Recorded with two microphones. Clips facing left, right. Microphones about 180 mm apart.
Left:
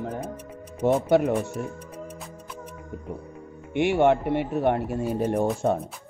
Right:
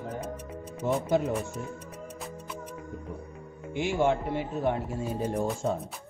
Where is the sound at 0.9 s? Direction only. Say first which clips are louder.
Left 6 dB; 65° left (ahead or behind).